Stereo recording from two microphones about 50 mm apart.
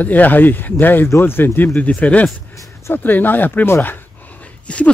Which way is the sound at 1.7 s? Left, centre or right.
Left.